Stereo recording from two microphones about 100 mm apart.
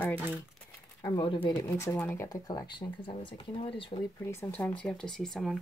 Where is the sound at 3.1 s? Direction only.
60° left (ahead or behind).